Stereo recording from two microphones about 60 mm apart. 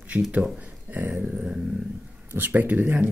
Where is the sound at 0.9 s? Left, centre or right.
Right.